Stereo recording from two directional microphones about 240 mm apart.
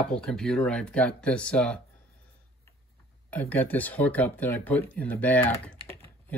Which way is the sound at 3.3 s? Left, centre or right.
Centre.